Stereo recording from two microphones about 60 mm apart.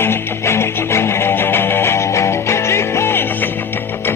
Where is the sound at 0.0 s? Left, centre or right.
Left.